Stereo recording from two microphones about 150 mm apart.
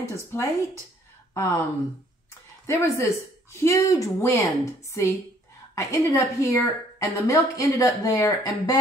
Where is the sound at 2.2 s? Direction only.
20° left (ahead or behind).